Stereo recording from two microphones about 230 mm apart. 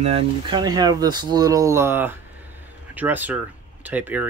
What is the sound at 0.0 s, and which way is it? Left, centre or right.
Speech, right.